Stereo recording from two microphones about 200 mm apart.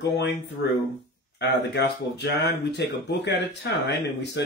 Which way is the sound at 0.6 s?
60° left (ahead or behind).